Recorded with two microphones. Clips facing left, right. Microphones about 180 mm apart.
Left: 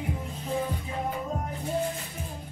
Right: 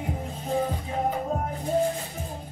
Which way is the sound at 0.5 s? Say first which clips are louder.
Right 4 dB; 45° right (ahead or behind).